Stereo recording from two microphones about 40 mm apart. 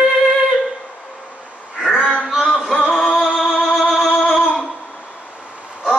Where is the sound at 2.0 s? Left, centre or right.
Left.